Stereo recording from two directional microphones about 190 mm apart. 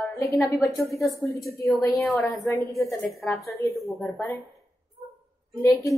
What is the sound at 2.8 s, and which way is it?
Speech, 15° left (ahead or behind).